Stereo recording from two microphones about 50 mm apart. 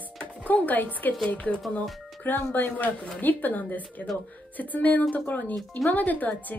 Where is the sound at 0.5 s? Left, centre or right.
Left.